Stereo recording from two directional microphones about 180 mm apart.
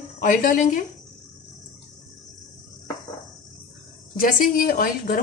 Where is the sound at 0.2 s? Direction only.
50° left (ahead or behind).